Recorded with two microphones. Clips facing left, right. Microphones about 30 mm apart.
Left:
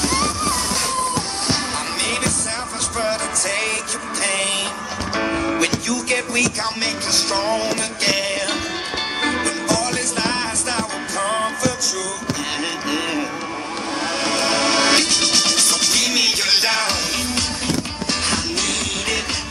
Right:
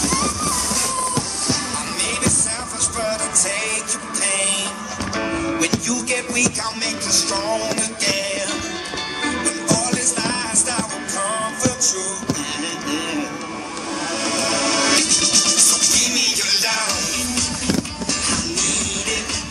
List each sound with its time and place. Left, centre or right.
0.0 s music: left
4.2 s music: left
14.2 s music: left
18.2 s music: left